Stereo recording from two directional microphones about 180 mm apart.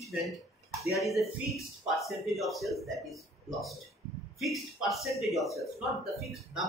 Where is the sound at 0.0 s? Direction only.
Centre (ahead or behind).